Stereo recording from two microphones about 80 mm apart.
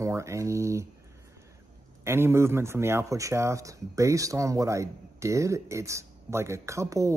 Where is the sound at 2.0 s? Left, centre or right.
Right.